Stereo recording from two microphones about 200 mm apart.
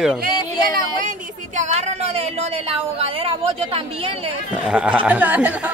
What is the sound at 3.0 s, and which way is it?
Speech, 30° right (ahead or behind).